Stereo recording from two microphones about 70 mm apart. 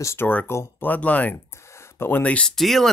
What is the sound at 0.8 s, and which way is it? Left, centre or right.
Speech, left.